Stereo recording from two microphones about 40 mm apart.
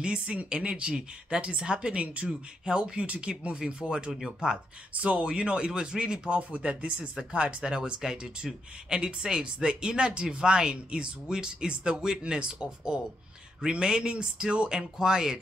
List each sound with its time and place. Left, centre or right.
0.0 s speech: right
4.9 s speech: right
5.2 s speech: right